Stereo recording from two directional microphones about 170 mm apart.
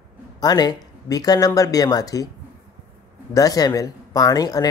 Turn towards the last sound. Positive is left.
turn(degrees=20)  # may be behind; listen again after turning